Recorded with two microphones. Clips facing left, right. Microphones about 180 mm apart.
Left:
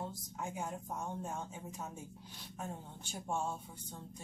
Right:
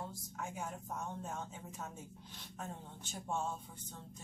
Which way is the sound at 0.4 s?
15° left (ahead or behind).